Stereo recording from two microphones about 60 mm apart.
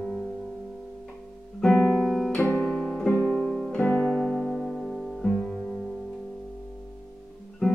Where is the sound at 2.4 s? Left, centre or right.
Left.